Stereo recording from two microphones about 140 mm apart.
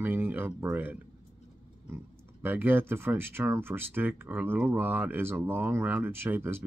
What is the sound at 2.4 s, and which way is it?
Speech, 15° right (ahead or behind).